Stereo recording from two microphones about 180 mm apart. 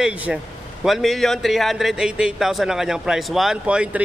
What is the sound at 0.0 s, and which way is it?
A man's voice, 5° right (ahead or behind).